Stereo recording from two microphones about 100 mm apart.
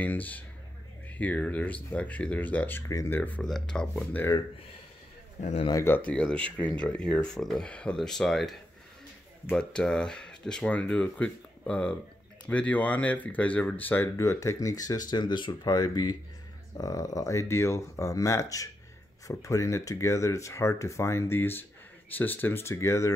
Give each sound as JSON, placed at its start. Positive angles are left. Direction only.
{"t": 0.0, "sound": "speech", "side_deg": 15}
{"t": 3.4, "sound": "speech", "side_deg": 5}
{"t": 6.0, "sound": "speech", "side_deg": 10}
{"t": 9.6, "sound": "speech", "side_deg": 10}